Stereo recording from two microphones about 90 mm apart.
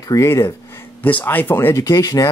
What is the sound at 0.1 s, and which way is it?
Speech, 35° left (ahead or behind).